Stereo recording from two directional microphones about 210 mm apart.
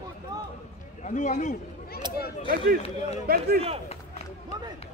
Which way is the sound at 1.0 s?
35° left (ahead or behind).